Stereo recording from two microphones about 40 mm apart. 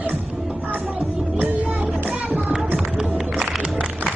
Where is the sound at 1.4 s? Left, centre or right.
Right.